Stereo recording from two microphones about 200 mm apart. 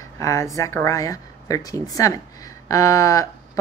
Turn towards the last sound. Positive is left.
turn(degrees=15)  # may be behind; listen again after turning